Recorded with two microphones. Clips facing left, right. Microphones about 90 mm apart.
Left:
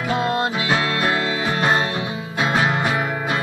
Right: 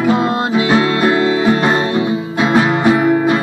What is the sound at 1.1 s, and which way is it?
Music, 15° right (ahead or behind).